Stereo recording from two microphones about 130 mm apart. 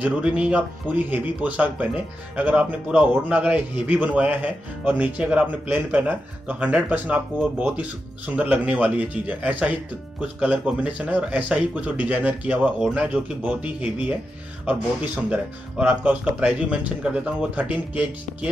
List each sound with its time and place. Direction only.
0.0 s a man's voice: 10° right (ahead or behind)
15.2 s a man's voice: 10° right (ahead or behind)